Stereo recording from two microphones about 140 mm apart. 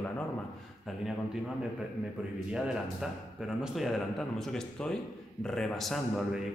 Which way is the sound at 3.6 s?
Centre (ahead or behind).